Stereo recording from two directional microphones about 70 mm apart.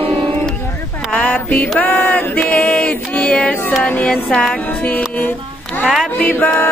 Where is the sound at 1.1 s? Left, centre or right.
Left.